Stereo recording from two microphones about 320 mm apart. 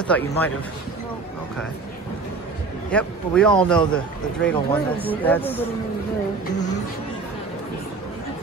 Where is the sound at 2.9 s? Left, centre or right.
Centre.